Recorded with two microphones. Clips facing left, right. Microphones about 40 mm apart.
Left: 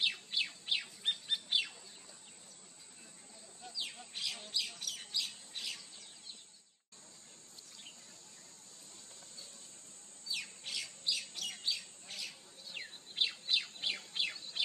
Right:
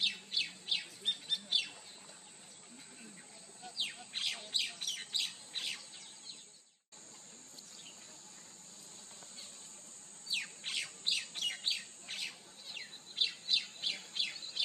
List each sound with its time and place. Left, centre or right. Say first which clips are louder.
0.0 s bird: left 1 dB; centre
3.6 s a sound: left 1 dB; centre
4.1 s bird: right 2 dB; right
4.5 s squawk: right 2 dB; right
10.3 s bird: right 3 dB; right
12.7 s bird: left 1 dB; centre